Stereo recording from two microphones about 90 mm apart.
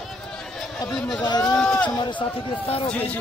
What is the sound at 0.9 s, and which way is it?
Speech, 10° left (ahead or behind).